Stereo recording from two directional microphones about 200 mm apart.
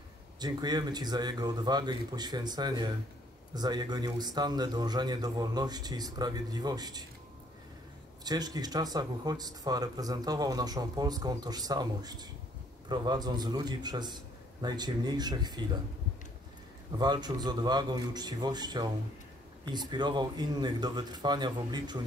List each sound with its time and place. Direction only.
0.4 s speech: 20° right (ahead or behind)
8.2 s speech: 20° right (ahead or behind)
17.0 s speech: 20° right (ahead or behind)